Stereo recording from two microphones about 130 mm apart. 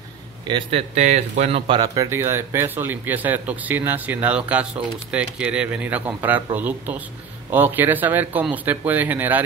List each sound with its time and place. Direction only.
0.5 s a man's voice: 45° right (ahead or behind); by 1.6 s 60° right (ahead or behind)
1.7 s speech: 30° right (ahead or behind)
2.0 s speech: 20° right (ahead or behind)